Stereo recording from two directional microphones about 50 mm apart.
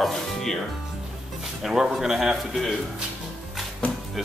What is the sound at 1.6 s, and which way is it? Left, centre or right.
Speech, centre.